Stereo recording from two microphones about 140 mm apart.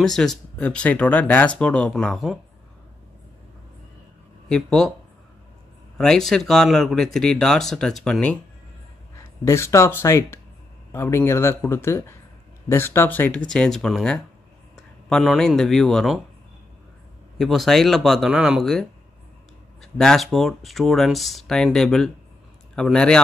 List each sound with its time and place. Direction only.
0.0 s speech: 5° left (ahead or behind)
4.5 s speech: 5° left (ahead or behind)
5.9 s speech: 5° left (ahead or behind)
9.1 s speech: 20° left (ahead or behind); by 16.2 s 5° left (ahead or behind)
17.4 s speech: centre (ahead or behind)